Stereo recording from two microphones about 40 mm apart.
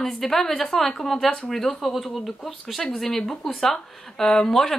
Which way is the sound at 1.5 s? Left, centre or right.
Centre.